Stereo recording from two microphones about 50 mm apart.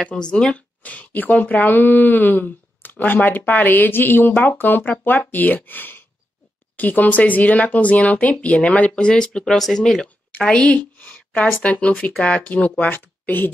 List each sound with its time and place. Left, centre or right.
0.0 s speech: centre
0.6 s speech: left; by 10.0 s centre
10.4 s speech: left
11.0 s a sound: left
11.6 s speech: left